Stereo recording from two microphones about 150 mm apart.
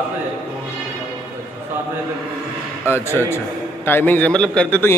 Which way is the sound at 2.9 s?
15° left (ahead or behind).